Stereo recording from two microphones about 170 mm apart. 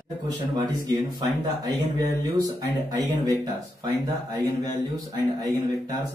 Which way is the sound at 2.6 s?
20° right (ahead or behind).